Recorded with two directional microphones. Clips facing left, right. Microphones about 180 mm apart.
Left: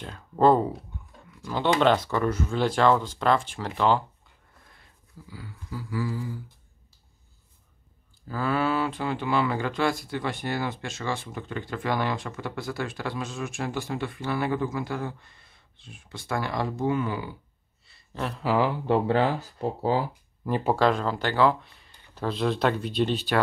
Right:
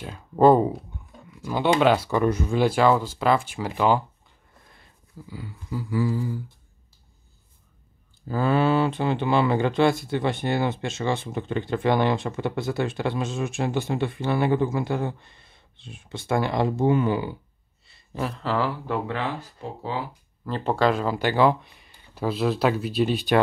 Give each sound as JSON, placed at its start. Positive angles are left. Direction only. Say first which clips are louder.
{"t": 0.0, "sound": "a sound", "louder": "right 3 dB", "side_deg": -10}
{"t": 1.8, "sound": "speech", "louder": "right 1 dB", "side_deg": -10}
{"t": 5.3, "sound": "speech", "louder": "right 5 dB", "side_deg": -20}
{"t": 8.3, "sound": "speech", "louder": "right 5 dB", "side_deg": -25}
{"t": 18.1, "sound": "speech", "louder": "right 3 dB", "side_deg": -5}
{"t": 18.4, "sound": "speech", "louder": "left 3 dB", "side_deg": 15}
{"t": 18.9, "sound": "speech", "louder": "left 5 dB", "side_deg": 30}
{"t": 20.4, "sound": "speech", "louder": "left 2 dB", "side_deg": 15}
{"t": 20.7, "sound": "speech", "louder": "right 3 dB", "side_deg": 0}